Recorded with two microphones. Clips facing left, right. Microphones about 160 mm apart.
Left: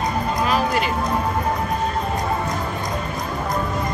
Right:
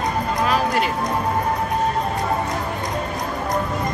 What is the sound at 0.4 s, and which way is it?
Music, centre (ahead or behind).